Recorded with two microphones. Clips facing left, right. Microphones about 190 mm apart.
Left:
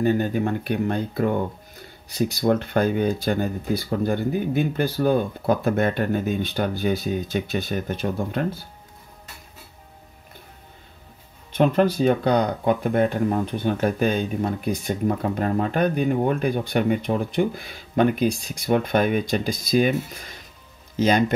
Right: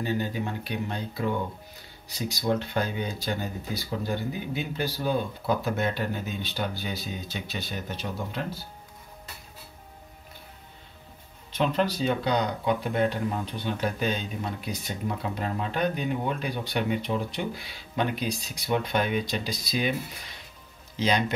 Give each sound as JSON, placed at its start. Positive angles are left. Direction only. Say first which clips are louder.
{"t": 0.0, "sound": "speech", "louder": "left 8 dB", "side_deg": 50}
{"t": 11.5, "sound": "speech", "louder": "left 7 dB", "side_deg": 50}